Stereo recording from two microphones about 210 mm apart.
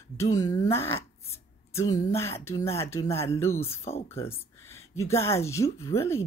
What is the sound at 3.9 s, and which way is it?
Speech, 30° left (ahead or behind).